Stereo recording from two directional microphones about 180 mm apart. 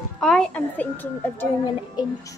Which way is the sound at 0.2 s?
5° left (ahead or behind).